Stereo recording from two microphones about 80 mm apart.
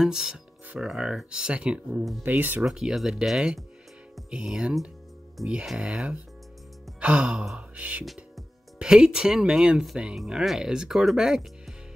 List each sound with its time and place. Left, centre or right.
0.0 s speech: centre; by 2.6 s right
2.6 s speech: centre